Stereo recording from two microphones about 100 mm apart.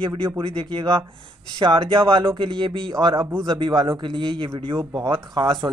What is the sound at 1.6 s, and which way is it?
Speech, 55° right (ahead or behind).